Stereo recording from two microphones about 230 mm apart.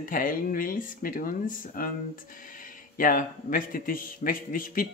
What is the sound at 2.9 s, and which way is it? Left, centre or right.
A man's voice, left.